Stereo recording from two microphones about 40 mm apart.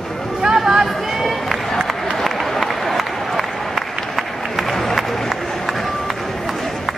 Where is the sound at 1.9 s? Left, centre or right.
Centre.